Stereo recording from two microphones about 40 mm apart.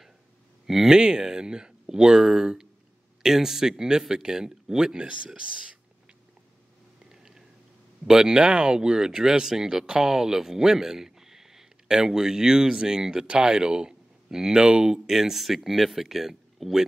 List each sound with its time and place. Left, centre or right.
0.7 s speech: centre
0.9 s speech: right
5.0 s speech: right
7.1 s a sound: centre
8.1 s speech: centre
15.0 s speech: centre